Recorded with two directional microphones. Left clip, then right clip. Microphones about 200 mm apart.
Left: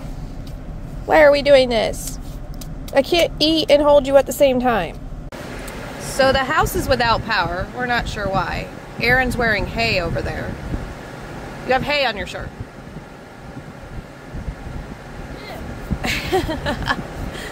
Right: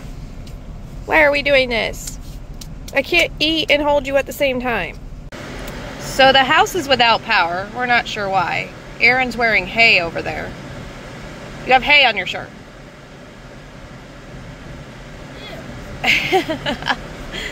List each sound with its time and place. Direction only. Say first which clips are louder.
1.0 s a woman's voice: left 2 dB; 15° left (ahead or behind)
6.1 s speech: right 5 dB; 10° right (ahead or behind)
11.6 s speech: right 6 dB; centre (ahead or behind)
16.0 s a sound: right 6 dB; centre (ahead or behind)